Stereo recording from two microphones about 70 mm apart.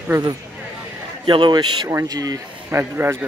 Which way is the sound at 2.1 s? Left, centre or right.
Right.